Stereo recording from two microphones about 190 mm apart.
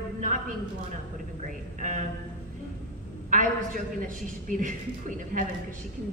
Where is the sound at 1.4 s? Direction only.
45° right (ahead or behind).